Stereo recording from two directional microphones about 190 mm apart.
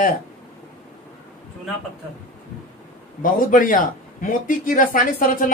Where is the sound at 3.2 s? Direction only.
45° left (ahead or behind).